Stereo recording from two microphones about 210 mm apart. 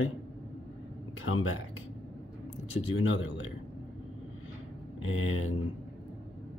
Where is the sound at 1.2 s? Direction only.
75° left (ahead or behind).